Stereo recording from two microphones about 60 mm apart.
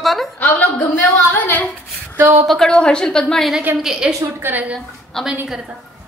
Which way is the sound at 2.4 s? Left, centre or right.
Centre.